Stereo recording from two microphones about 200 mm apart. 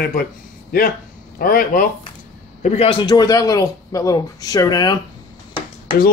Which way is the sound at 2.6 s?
35° left (ahead or behind).